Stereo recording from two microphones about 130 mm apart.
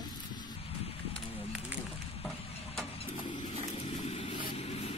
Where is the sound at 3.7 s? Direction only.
50° left (ahead or behind).